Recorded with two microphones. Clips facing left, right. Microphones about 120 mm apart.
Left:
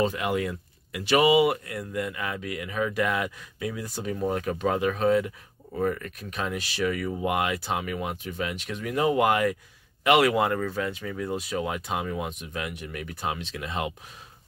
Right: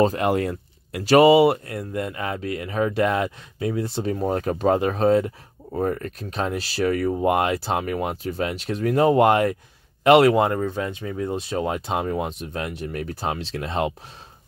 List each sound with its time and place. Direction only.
0.0 s speech: 40° right (ahead or behind)